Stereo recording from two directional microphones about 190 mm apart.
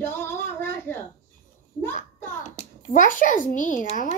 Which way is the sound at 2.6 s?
45° left (ahead or behind).